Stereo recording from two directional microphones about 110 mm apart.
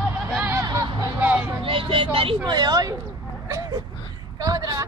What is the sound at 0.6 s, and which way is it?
Music, 30° right (ahead or behind).